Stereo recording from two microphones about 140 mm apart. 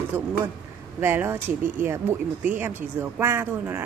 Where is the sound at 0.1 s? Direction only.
15° right (ahead or behind).